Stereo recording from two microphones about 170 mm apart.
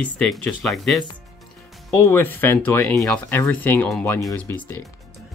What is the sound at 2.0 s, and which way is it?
Speech, 15° left (ahead or behind).